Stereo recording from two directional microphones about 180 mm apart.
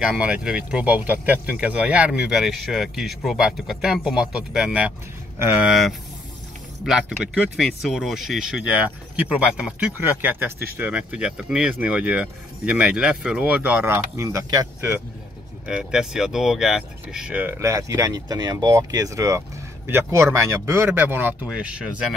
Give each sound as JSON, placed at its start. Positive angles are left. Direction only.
{"t": 0.1, "sound": "speech", "side_deg": -5}
{"t": 15.6, "sound": "speech", "side_deg": -5}